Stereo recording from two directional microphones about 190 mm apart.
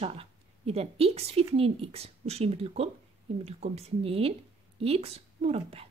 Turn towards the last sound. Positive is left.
turn(degrees=-30)  # may be behind; listen again after turning